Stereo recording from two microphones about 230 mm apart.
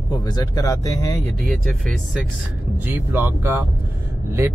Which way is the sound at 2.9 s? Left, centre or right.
Centre.